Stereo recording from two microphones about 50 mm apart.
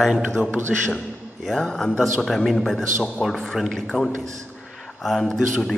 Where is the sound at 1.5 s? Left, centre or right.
Centre.